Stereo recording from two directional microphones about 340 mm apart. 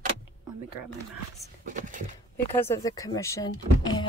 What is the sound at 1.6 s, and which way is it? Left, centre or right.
Speech, right.